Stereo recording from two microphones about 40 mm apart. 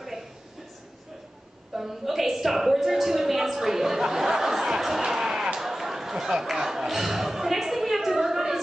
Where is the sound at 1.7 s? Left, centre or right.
Centre.